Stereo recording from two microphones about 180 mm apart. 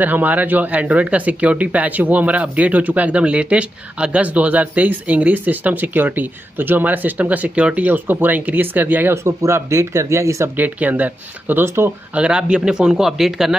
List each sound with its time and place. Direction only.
0.0 s speech: 10° right (ahead or behind)